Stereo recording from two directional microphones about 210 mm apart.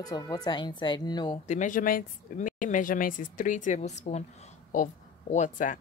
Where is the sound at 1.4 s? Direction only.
35° left (ahead or behind).